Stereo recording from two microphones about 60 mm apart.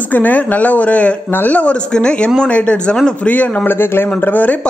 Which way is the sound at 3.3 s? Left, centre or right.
Left.